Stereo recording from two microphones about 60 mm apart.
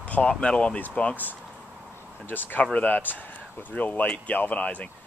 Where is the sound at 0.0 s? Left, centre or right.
Left.